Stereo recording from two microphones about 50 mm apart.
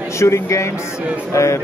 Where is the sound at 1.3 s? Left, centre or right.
Left.